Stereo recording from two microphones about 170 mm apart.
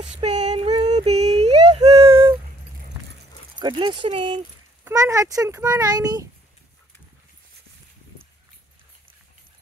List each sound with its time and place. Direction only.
0.0 s female singing: 40° right (ahead or behind)
0.8 s a sound: 40° right (ahead or behind)
3.5 s speech: 25° right (ahead or behind)
4.8 s a child's voice: 15° right (ahead or behind)